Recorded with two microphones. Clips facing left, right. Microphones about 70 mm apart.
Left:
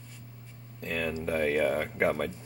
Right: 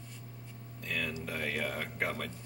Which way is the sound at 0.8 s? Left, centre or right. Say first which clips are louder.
Left 5 dB; left.